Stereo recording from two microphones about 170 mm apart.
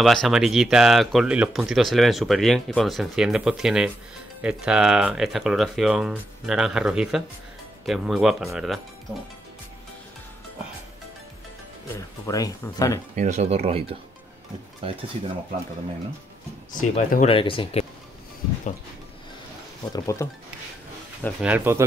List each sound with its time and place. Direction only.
0.0 s speech: centre (ahead or behind)
11.9 s speech: 20° left (ahead or behind)
13.1 s speech: 45° right (ahead or behind)
16.9 s speech: 40° left (ahead or behind)
19.9 s speech: 20° left (ahead or behind)
21.4 s speech: 10° right (ahead or behind)